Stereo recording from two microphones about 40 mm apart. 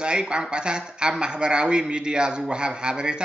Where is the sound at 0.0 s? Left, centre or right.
Right.